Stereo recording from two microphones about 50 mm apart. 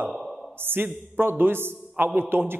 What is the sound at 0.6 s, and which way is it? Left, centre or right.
A man's voice, right.